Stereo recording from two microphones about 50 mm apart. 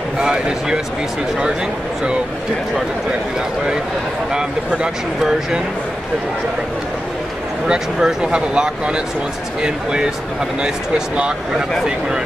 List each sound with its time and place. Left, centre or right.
0.2 s speech: centre
4.3 s speech: centre
7.6 s speech: centre